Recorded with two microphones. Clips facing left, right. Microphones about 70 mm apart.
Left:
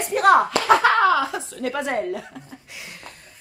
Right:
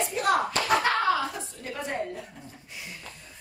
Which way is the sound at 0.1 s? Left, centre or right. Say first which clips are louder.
Left 12 dB; left.